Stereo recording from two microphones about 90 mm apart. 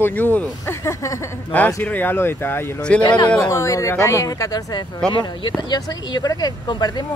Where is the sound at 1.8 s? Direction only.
20° left (ahead or behind); by 4.8 s 45° left (ahead or behind).